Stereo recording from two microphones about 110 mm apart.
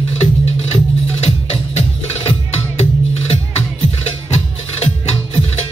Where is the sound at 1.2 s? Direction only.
65° left (ahead or behind).